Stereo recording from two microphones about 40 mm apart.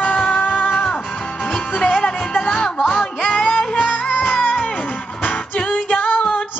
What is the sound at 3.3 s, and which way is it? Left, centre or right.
Music, left.